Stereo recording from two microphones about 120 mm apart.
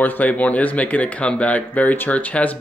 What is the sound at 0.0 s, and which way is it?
Speech, 15° left (ahead or behind).